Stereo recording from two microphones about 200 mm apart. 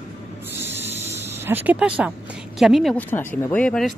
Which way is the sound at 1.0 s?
10° right (ahead or behind).